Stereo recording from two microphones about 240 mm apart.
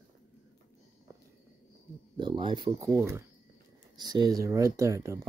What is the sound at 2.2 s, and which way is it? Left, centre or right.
Speech, centre.